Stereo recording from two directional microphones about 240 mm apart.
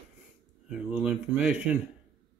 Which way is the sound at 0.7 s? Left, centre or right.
Centre.